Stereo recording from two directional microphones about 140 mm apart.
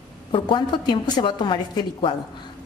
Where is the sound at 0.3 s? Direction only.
35° left (ahead or behind).